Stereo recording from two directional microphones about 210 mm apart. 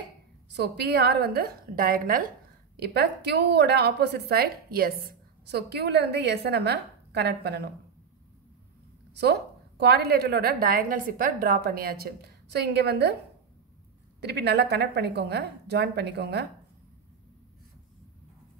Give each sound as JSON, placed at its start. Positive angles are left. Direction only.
{"t": 0.5, "sound": "a woman's voice", "side_deg": -55}
{"t": 9.1, "sound": "a woman's voice", "side_deg": -50}
{"t": 14.2, "sound": "a woman's voice", "side_deg": -50}